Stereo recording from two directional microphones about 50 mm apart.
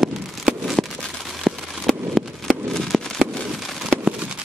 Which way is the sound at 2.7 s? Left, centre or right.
Centre.